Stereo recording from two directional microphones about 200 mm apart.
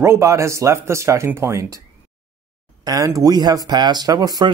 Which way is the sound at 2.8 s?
15° right (ahead or behind).